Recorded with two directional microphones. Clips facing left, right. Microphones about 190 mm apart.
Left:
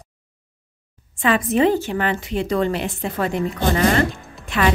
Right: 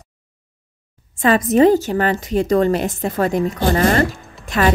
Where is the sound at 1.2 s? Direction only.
40° right (ahead or behind).